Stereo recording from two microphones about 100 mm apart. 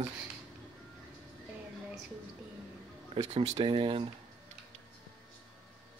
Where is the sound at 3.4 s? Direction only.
55° right (ahead or behind).